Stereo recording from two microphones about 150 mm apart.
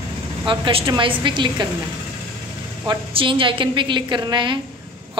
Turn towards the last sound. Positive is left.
turn(degrees=-30)  # may be behind; listen again after turning